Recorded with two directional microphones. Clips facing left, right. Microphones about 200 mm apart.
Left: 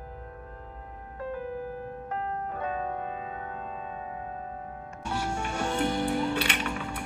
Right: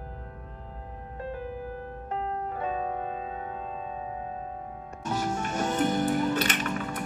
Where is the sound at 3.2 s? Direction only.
30° right (ahead or behind).